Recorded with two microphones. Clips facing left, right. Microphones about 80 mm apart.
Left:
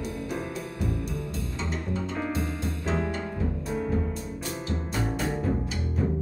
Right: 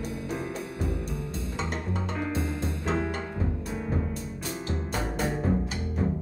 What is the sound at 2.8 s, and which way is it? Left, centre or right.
Music, centre.